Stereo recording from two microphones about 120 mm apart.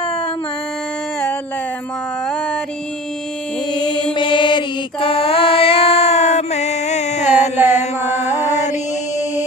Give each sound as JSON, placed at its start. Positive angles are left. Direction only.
{"t": 3.7, "sound": "mantra", "side_deg": 40}